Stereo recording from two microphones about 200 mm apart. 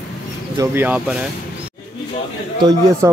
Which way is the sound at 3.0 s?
15° right (ahead or behind).